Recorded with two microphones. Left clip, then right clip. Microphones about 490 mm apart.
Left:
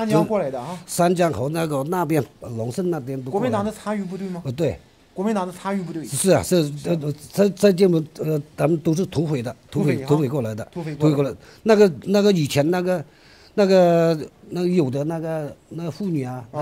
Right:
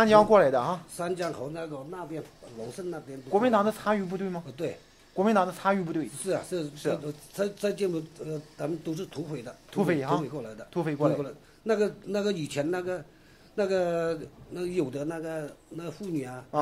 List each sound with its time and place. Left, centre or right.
0.0 s speech: right
0.9 s a man's voice: left
2.7 s speech: left
3.3 s speech: centre
4.5 s a man's voice: left
5.1 s speech: centre
6.2 s a man's voice: left
9.8 s speech: centre
10.2 s a man's voice: left
10.7 s speech: centre
11.1 s a man's voice: left